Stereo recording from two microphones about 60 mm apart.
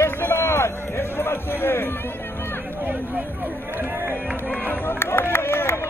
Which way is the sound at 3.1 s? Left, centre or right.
Right.